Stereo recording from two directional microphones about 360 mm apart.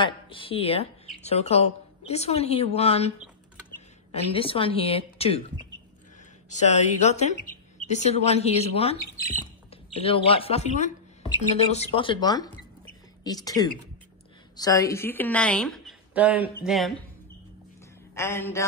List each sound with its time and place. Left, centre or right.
0.0 s speech: centre
6.5 s a woman's voice: centre
9.9 s a woman's voice: centre
18.1 s speech: centre